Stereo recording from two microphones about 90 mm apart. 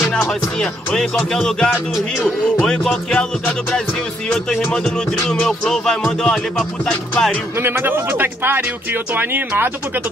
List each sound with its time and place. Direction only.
0.0 s music: 5° left (ahead or behind)
7.6 s speech: 25° right (ahead or behind)